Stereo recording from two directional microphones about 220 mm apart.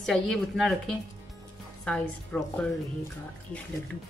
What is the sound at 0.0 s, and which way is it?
Speech, centre (ahead or behind).